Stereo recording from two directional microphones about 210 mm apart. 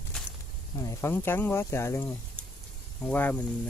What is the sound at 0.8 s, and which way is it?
Speech, 10° left (ahead or behind).